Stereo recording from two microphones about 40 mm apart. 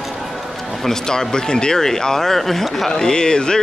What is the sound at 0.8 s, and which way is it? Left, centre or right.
Speech, centre.